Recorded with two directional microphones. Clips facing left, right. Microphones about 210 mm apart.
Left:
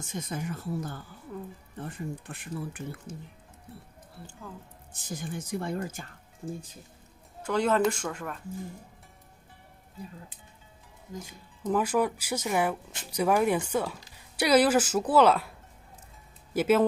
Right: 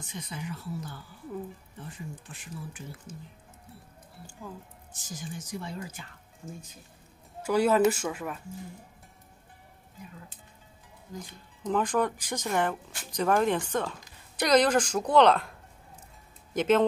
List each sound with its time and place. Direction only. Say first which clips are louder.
0.0 s speech: left 4 dB; 45° left (ahead or behind)
4.9 s speech: left 4 dB; 60° left (ahead or behind)
6.4 s speech: left 6 dB; 35° left (ahead or behind)
7.4 s speech: right 2 dB; 10° right (ahead or behind)
11.2 s speech: left 2 dB; 5° left (ahead or behind)
16.5 s speech: even; 5° left (ahead or behind)